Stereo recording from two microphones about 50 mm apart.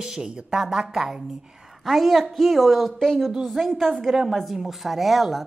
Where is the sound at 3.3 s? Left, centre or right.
Centre.